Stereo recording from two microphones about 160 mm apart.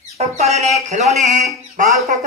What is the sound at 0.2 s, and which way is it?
Speech, 45° right (ahead or behind).